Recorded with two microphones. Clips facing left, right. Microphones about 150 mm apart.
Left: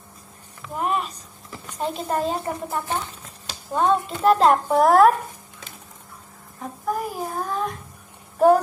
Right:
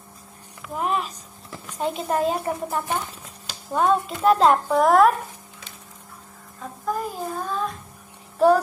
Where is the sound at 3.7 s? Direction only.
Centre (ahead or behind).